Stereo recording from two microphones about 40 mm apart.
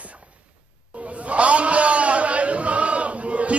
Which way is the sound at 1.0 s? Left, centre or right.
Right.